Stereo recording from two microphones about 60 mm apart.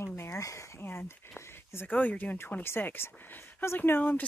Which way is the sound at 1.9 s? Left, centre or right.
Left.